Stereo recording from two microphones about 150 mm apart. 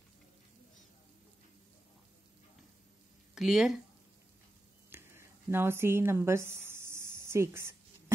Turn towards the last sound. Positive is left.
turn(degrees=-20)  # may be behind; listen again after turning